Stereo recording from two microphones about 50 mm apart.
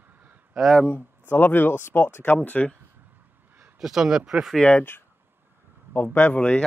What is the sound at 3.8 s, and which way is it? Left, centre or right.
Speech, centre.